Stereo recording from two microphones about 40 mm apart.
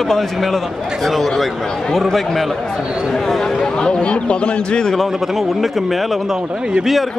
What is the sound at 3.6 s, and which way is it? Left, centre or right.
A man's voice, centre.